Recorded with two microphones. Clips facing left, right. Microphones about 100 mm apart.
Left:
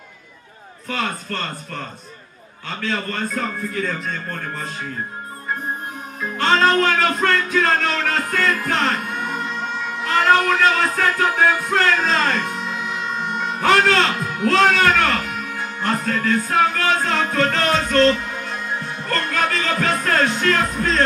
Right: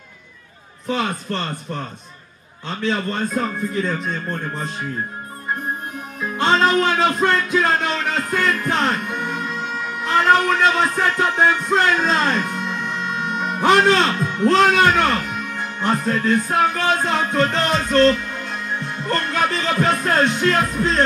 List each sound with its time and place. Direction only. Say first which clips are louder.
0.8 s speech: right 3 dB; 20° right (ahead or behind)
2.8 s speech: right 3 dB; 20° right (ahead or behind)
6.3 s speech: even; 15° right (ahead or behind)
8.9 s music: even; 5° left (ahead or behind)
10.0 s speech: even; 5° right (ahead or behind)
10.6 s speech: even; 15° right (ahead or behind)
12.1 s music: right 1 dB; 10° right (ahead or behind)
12.4 s music: right 1 dB; 5° left (ahead or behind)
13.6 s speech: right 2 dB; 20° right (ahead or behind)
14.2 s music: right 3 dB; 5° left (ahead or behind)
14.5 s speech: right 1 dB; 15° right (ahead or behind)
15.0 s music: right 1 dB; centre (ahead or behind)
15.8 s music: right 2 dB; 15° right (ahead or behind)
19.0 s music: right 1 dB; 15° right (ahead or behind)